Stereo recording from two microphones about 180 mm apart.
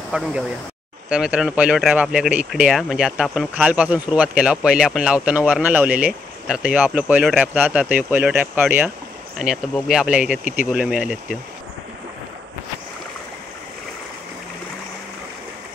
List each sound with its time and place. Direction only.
0.1 s speech: 10° right (ahead or behind)
10.4 s speech: 45° left (ahead or behind)
10.7 s speech: 5° right (ahead or behind)